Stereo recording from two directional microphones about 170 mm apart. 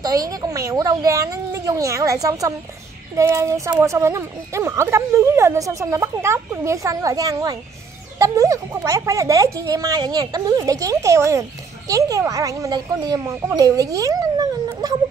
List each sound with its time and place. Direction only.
0.0 s a woman's voice: 20° right (ahead or behind)